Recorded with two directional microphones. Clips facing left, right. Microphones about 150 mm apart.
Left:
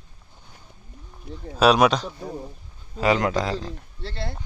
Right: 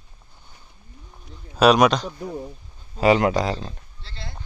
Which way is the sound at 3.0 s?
15° right (ahead or behind).